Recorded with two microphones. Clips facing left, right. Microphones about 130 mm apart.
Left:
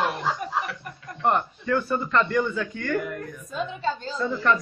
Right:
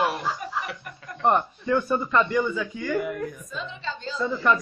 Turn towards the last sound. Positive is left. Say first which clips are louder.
# even
turn(degrees=-15)  # may be behind; listen again after turning